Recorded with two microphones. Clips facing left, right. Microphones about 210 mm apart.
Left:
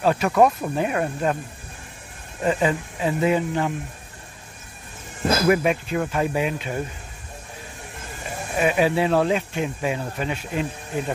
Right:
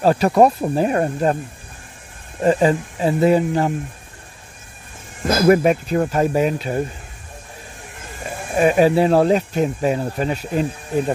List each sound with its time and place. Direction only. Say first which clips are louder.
0.0 s speech: right 4 dB; 35° right (ahead or behind)
2.4 s speech: right 6 dB; 40° right (ahead or behind)
5.5 s speech: right 8 dB; 40° right (ahead or behind)
8.5 s speech: right 6 dB; 40° right (ahead or behind)